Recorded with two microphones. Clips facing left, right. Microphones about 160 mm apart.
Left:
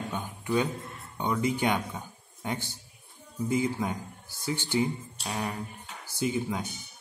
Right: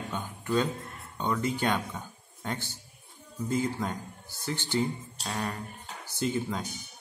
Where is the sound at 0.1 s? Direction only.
15° left (ahead or behind).